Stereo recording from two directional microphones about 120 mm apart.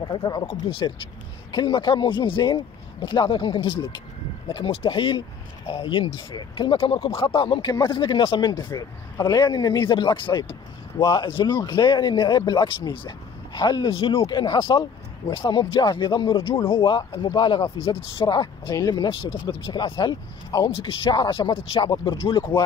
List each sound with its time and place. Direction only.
0.0 s speech: 40° left (ahead or behind)
14.7 s speech: 30° left (ahead or behind)
15.3 s speech: 40° left (ahead or behind)
20.7 s speech: 45° left (ahead or behind)